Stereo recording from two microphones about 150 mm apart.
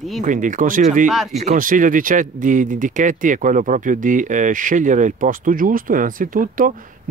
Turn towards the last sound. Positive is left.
turn(degrees=-65)  # may be behind; listen again after turning